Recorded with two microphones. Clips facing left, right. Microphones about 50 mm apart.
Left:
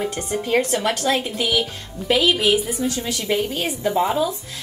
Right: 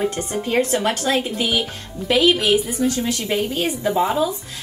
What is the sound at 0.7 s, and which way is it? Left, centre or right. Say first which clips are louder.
Speech: right 1 dB; centre.